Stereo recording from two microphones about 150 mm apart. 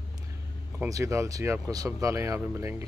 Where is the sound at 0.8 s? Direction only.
20° right (ahead or behind).